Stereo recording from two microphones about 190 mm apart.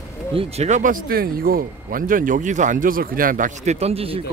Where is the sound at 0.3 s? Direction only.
30° right (ahead or behind).